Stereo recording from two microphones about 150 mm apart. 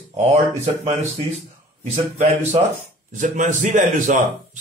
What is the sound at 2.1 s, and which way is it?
Speech, 55° right (ahead or behind).